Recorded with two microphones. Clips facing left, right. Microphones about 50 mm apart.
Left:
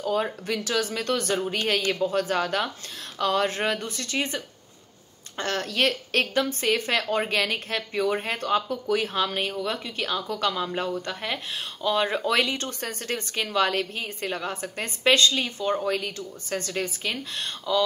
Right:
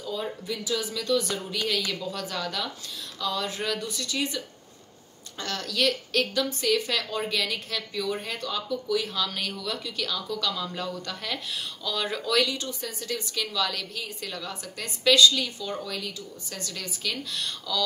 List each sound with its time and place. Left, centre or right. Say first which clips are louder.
0.0 s speech: left 6 dB; left
5.4 s speech: left 3 dB; left
12.6 s speech: left 2 dB; left